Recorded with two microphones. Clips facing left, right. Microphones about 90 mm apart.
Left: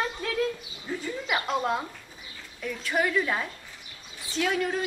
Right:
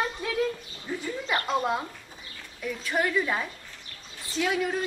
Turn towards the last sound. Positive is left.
turn(degrees=0)  # may be behind; listen again after turning